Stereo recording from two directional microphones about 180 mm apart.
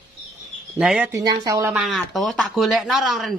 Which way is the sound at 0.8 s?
5° right (ahead or behind).